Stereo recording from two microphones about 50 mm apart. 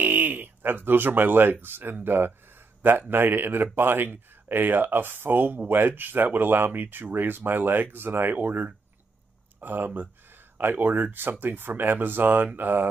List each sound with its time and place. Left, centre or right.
0.0 s speech: right